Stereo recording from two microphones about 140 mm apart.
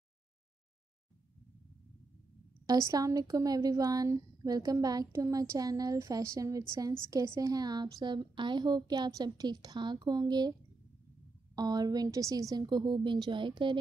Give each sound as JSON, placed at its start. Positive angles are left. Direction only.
{"t": 2.6, "sound": "a woman's voice", "side_deg": -25}
{"t": 11.5, "sound": "a woman's voice", "side_deg": -25}